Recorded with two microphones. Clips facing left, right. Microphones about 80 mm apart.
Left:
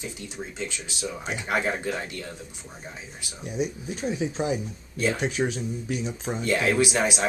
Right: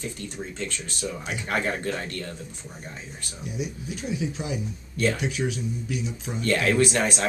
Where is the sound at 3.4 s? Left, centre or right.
Left.